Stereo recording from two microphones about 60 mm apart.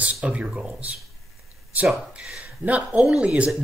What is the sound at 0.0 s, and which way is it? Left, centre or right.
Speech, right.